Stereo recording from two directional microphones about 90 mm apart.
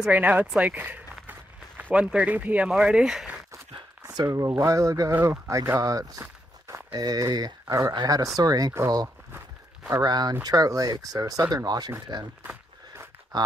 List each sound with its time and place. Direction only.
0.0 s speech: 15° right (ahead or behind)
1.8 s a sound: 20° right (ahead or behind)
2.0 s speech: 15° right (ahead or behind)
4.2 s speech: 40° right (ahead or behind)
10.0 s speech: 50° right (ahead or behind)
12.4 s a sound: 25° right (ahead or behind)
13.3 s speech: 50° right (ahead or behind)